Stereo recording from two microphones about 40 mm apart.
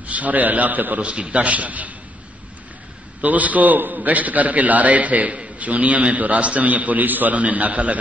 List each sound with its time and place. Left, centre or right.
0.0 s a man's voice: right
1.0 s a man's voice: right
3.2 s a man's voice: right